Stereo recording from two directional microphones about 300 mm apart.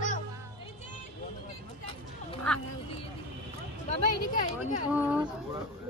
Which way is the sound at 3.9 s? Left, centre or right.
Left.